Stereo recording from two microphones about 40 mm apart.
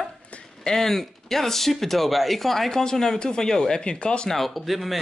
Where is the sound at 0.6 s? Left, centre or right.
Centre.